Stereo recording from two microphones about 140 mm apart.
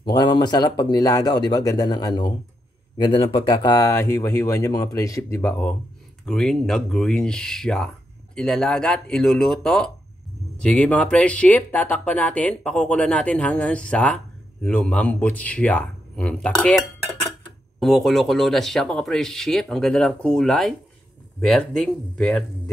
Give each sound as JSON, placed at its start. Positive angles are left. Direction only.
{"t": 0.1, "sound": "speech", "side_deg": 30}